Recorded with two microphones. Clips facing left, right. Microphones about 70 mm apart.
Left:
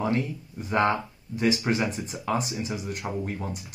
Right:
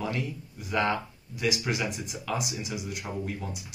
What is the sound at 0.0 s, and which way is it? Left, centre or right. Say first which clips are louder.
Speech: left 5 dB; left.